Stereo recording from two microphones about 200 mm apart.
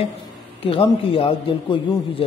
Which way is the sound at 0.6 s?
25° left (ahead or behind).